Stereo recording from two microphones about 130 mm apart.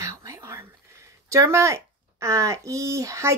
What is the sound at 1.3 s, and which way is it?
Speech, 20° right (ahead or behind).